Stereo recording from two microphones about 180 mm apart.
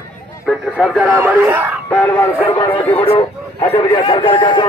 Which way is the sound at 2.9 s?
30° left (ahead or behind).